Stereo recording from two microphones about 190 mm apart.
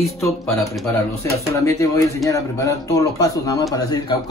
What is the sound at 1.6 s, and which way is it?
Speech, 15° left (ahead or behind).